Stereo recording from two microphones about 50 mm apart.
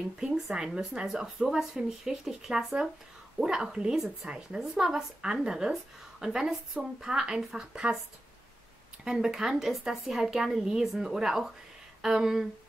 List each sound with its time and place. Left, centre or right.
0.2 s speech: centre
4.3 s a woman's voice: right
4.6 s speech: centre
9.0 s speech: centre